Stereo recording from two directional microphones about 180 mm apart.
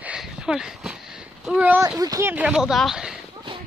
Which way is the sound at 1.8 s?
20° right (ahead or behind).